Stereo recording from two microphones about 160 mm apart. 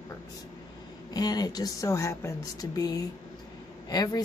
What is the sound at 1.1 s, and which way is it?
Speech, 25° left (ahead or behind).